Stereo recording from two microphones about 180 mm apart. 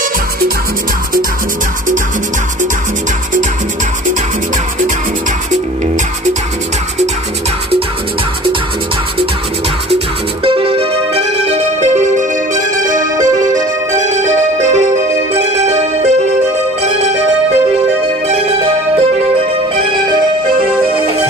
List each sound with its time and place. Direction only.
10.4 s music: 30° right (ahead or behind)
13.4 s music: 20° right (ahead or behind)
13.9 s music: 40° right (ahead or behind)
18.3 s music: 35° right (ahead or behind)